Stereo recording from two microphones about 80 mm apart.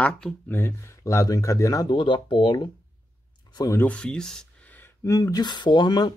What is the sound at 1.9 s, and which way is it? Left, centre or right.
Speech, left.